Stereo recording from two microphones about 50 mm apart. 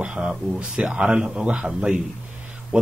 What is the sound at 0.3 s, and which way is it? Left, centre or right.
A man's voice, centre.